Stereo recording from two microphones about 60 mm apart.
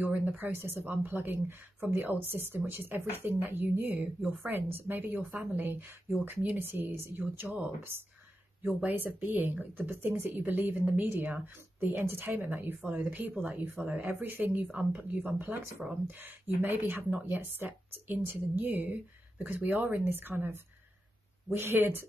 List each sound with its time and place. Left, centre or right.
0.0 s a woman's voice: right
8.6 s a woman's voice: right